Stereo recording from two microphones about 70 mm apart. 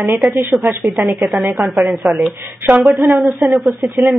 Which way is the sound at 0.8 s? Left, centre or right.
Centre.